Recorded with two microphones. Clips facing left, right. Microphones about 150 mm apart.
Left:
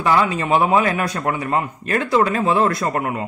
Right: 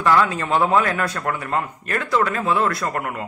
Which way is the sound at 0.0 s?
15° left (ahead or behind).